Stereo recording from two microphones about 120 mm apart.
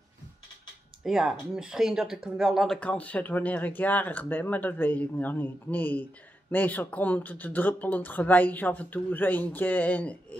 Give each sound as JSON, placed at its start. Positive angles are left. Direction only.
{"t": 1.0, "sound": "speech", "side_deg": -5}
{"t": 2.8, "sound": "speech", "side_deg": 10}